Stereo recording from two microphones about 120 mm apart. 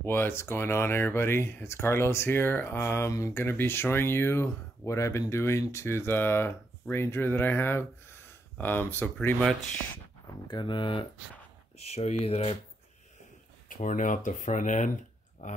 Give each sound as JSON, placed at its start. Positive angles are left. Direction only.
{"t": 0.0, "sound": "speech", "side_deg": 20}
{"t": 10.2, "sound": "speech", "side_deg": 35}
{"t": 11.8, "sound": "speech", "side_deg": 65}
{"t": 13.7, "sound": "speech", "side_deg": 90}